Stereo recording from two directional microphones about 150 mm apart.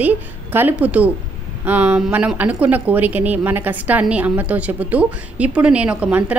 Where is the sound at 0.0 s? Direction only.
15° right (ahead or behind).